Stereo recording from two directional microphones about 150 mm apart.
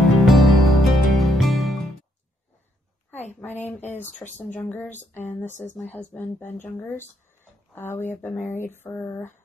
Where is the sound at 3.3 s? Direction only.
10° left (ahead or behind).